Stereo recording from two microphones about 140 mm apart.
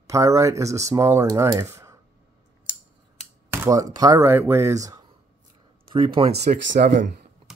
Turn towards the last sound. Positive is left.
turn(degrees=-70)  # may be behind; listen again after turning